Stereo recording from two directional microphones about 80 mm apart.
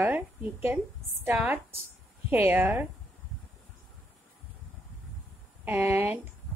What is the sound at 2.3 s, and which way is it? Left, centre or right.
Speech, right.